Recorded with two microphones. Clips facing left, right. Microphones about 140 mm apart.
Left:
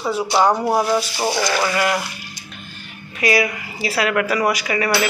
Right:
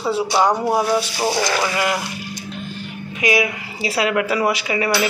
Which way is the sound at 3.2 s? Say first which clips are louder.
Left 1 dB; 15° right (ahead or behind).